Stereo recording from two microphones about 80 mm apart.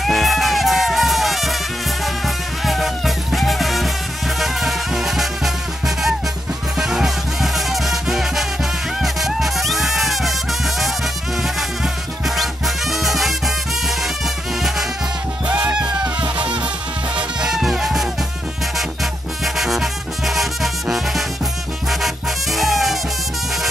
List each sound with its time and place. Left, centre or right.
0.0 s music: centre
6.8 s music: centre
12.4 s music: centre
15.4 s music: centre
17.4 s music: centre
19.4 s music: centre